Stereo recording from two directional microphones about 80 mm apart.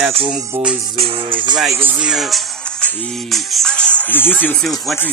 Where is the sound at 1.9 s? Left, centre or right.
Centre.